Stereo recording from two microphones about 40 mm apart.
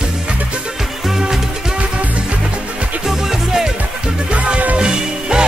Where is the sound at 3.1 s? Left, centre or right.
Centre.